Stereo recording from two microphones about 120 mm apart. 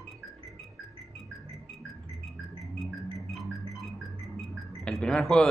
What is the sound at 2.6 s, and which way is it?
Music, centre (ahead or behind).